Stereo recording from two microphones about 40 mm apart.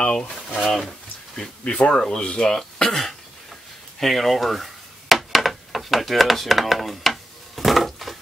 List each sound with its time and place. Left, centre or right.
0.7 s speech: centre
1.6 s speech: left
1.9 s speech: centre
4.0 s a sound: centre